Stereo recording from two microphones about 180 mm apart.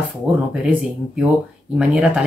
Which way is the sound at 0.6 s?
5° right (ahead or behind).